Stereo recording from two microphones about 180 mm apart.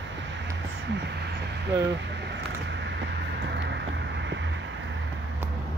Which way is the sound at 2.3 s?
80° right.